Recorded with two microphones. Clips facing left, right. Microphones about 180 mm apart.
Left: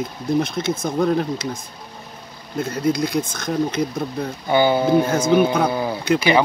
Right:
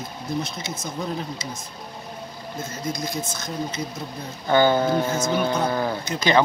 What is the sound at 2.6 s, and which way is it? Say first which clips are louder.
Speech: left 10 dB; 60° left (ahead or behind).